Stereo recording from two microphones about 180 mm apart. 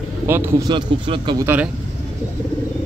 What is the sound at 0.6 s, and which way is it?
Speech, 25° right (ahead or behind).